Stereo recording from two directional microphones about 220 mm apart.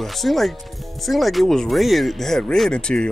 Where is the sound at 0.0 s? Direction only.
Centre (ahead or behind).